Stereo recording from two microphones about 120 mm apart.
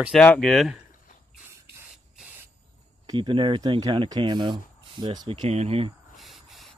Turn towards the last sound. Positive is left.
turn(degrees=0)  # may be behind; listen again after turning